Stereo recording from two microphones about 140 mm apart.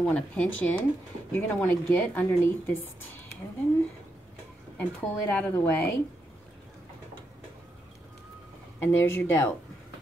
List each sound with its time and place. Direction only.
0.0 s a woman's voice: 10° left (ahead or behind)
4.7 s a woman's voice: 10° left (ahead or behind)
8.7 s a woman's voice: 15° left (ahead or behind)